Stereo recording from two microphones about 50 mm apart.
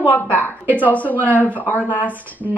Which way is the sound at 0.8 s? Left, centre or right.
Left.